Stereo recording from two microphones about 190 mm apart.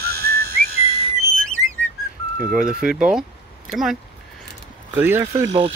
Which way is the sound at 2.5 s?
5° right (ahead or behind).